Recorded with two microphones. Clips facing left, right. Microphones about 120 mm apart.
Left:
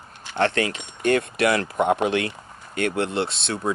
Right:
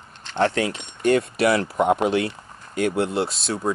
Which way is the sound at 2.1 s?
70° left (ahead or behind).